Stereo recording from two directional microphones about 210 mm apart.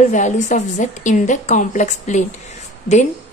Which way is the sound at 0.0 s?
35° left (ahead or behind).